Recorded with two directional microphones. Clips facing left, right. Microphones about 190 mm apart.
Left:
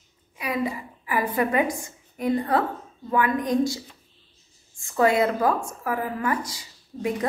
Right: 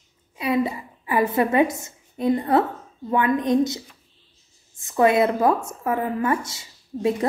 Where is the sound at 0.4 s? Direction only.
25° right (ahead or behind).